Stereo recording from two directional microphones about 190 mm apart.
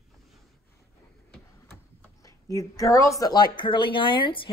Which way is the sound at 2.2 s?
20° left (ahead or behind).